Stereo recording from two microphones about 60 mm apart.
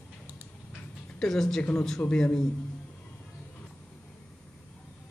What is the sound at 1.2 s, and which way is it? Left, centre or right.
A man's voice, centre.